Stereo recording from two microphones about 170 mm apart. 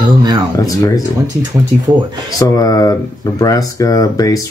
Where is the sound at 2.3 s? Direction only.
20° left (ahead or behind).